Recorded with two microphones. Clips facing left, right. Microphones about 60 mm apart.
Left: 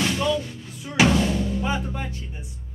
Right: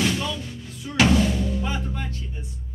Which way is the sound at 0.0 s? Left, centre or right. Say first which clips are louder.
Left 2 dB; centre.